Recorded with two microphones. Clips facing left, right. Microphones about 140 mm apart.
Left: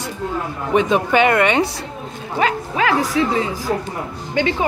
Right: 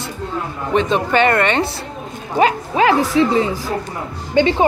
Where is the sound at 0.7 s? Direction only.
10° left (ahead or behind).